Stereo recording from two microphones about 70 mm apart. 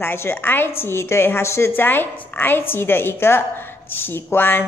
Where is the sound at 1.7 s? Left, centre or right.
Left.